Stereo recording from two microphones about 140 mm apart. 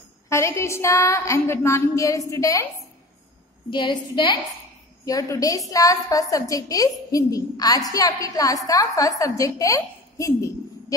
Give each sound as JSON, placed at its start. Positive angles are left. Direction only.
{"t": 0.3, "sound": "a woman's voice", "side_deg": 20}
{"t": 3.7, "sound": "a woman's voice", "side_deg": 35}